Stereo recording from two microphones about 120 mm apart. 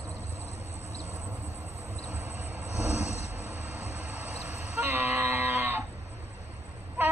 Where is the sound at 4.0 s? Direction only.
15° right (ahead or behind).